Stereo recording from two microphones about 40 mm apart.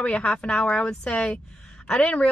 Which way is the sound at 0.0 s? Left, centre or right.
Left.